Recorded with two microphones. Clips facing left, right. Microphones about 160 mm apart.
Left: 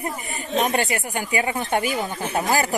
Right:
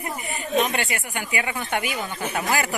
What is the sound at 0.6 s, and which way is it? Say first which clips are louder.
Speech: left 2 dB; 40° left (ahead or behind).